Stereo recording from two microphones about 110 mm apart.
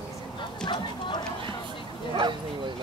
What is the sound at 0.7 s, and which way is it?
Speech, 45° left (ahead or behind).